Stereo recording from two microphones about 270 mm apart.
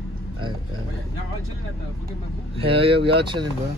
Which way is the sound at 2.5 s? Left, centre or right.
Centre.